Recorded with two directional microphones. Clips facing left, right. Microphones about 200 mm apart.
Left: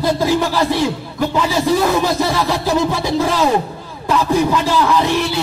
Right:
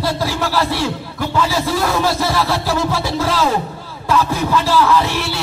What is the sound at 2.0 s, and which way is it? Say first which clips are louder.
A man's voice: left 1 dB; 15° left (ahead or behind).